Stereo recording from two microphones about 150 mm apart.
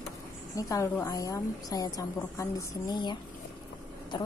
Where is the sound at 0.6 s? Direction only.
25° left (ahead or behind).